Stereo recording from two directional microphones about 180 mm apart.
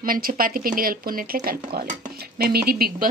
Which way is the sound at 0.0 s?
50° right (ahead or behind).